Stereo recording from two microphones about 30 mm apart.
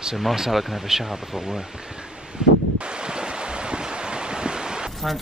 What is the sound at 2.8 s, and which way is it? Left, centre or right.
Waves, right.